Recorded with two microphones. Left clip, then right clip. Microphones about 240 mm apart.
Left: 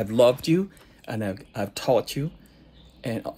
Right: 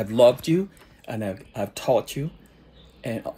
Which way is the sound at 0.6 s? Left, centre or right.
Left.